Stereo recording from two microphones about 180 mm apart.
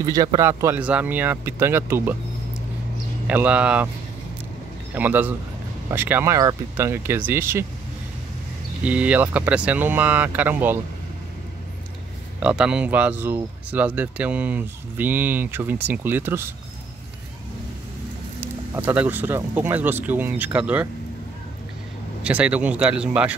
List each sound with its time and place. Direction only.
0.0 s speech: 20° right (ahead or behind)
3.3 s speech: 5° right (ahead or behind)
4.9 s speech: 10° right (ahead or behind)
8.8 s speech: 5° right (ahead or behind)
12.4 s speech: 5° right (ahead or behind)
18.8 s speech: 10° right (ahead or behind)
22.2 s speech: 5° right (ahead or behind)